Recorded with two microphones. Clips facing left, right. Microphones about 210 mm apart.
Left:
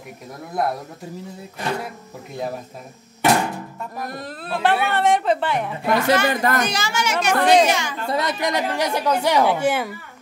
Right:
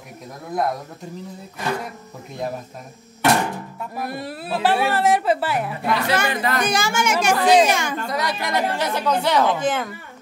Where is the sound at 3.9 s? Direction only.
10° right (ahead or behind).